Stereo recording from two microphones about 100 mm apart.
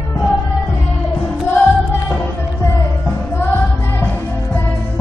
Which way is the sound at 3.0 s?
20° left (ahead or behind).